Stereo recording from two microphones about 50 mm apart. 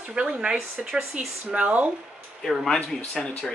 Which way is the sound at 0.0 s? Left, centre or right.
Centre.